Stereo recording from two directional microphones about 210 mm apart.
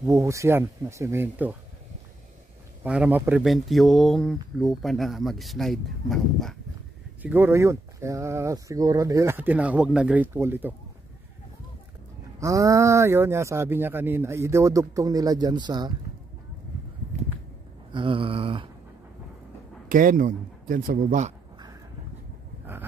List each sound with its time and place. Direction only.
0.0 s speech: 15° right (ahead or behind)
2.8 s speech: 5° right (ahead or behind)
12.4 s speech: 15° right (ahead or behind)
17.9 s a sound: 25° right (ahead or behind)
19.9 s speech: 40° right (ahead or behind)